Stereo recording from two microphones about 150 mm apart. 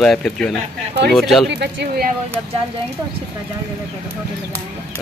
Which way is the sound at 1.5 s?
90° right.